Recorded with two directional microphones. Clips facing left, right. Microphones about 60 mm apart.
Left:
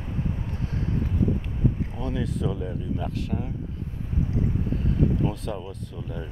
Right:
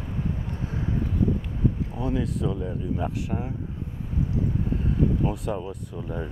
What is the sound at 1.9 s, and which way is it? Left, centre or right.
Speech, centre.